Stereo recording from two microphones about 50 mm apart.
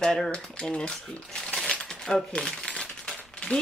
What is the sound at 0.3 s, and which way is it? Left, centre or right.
Speech, centre.